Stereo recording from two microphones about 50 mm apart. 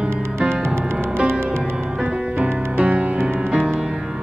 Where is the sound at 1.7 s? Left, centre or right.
Centre.